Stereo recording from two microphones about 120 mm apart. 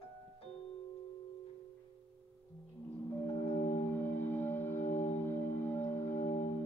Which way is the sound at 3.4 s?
65° left (ahead or behind).